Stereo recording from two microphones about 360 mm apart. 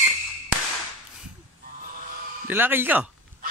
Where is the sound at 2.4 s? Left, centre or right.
Centre.